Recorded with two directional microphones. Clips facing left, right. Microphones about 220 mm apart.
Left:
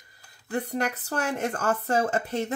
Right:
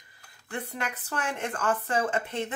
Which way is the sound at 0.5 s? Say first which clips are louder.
Left 7 dB; 40° left (ahead or behind).